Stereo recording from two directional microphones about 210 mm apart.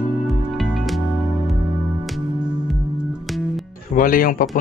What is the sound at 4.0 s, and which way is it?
Speech, 40° left (ahead or behind).